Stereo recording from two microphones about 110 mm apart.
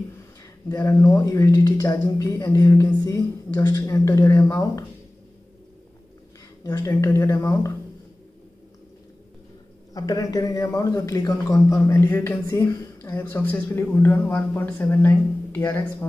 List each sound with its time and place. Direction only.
0.7 s a man's voice: 25° left (ahead or behind)
6.6 s a man's voice: 30° left (ahead or behind)
9.9 s a man's voice: 30° left (ahead or behind)
12.4 s a woman's voice: 30° left (ahead or behind)